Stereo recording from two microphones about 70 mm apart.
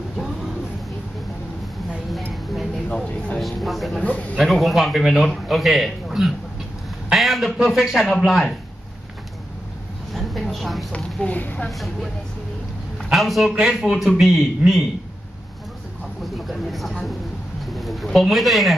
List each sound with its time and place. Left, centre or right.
2.3 s a sound: centre
2.9 s a sound: centre
3.3 s a man's voice: centre
4.0 s speech: left
4.4 s a man's voice: centre
10.1 s a sound: centre
10.9 s speech: centre
11.7 s a man's voice: centre
13.1 s a man's voice: centre
16.4 s a man's voice: centre